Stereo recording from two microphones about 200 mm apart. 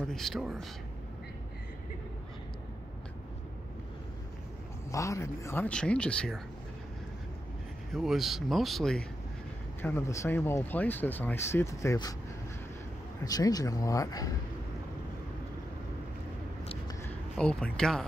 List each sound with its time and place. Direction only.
0.1 s speech: centre (ahead or behind)
4.9 s speech: 15° left (ahead or behind)
7.9 s speech: centre (ahead or behind); by 12.2 s 15° left (ahead or behind)
13.2 s speech: 20° left (ahead or behind)
17.0 s speech: 5° left (ahead or behind)